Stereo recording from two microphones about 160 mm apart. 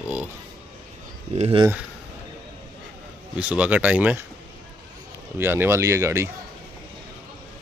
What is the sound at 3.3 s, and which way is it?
Speech, 10° right (ahead or behind).